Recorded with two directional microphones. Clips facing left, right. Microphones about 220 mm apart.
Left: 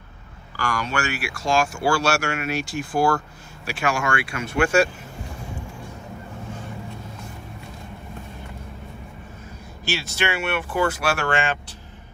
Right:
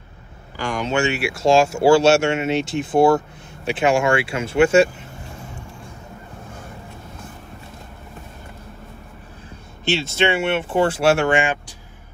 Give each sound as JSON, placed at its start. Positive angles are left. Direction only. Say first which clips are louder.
{"t": 0.6, "sound": "speech", "louder": "right 5 dB", "side_deg": -20}
{"t": 9.8, "sound": "speech", "louder": "right 6 dB", "side_deg": -25}